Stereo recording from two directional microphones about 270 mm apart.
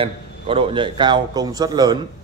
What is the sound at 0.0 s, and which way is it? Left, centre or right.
A man's voice, centre.